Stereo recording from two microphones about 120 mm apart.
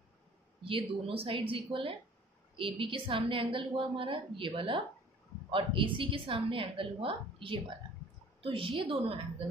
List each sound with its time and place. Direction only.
0.7 s a woman's voice: 50° right (ahead or behind)